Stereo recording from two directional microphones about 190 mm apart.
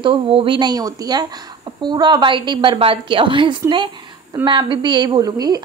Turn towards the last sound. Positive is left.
turn(degrees=-20)  # may be behind; listen again after turning